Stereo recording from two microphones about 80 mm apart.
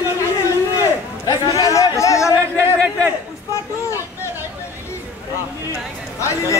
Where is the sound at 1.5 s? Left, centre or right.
Left.